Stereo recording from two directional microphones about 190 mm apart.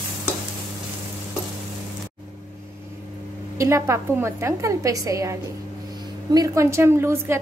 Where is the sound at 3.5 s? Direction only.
15° right (ahead or behind).